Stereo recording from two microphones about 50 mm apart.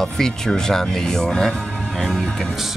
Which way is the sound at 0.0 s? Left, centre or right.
Centre.